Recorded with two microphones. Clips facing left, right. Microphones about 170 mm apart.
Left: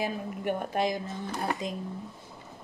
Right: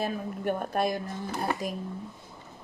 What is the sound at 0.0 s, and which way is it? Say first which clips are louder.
Speech: right 1 dB; 15° left (ahead or behind).